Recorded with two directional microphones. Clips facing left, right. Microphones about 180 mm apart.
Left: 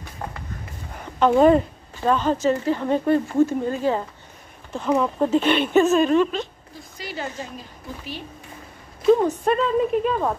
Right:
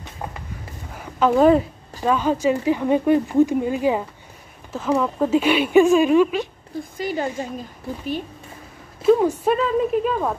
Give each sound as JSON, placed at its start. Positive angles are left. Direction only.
{"t": 0.2, "sound": "a sound", "side_deg": -15}
{"t": 0.9, "sound": "speech", "side_deg": -5}
{"t": 4.7, "sound": "speech", "side_deg": 0}
{"t": 7.0, "sound": "speech", "side_deg": -50}
{"t": 9.0, "sound": "speech", "side_deg": -5}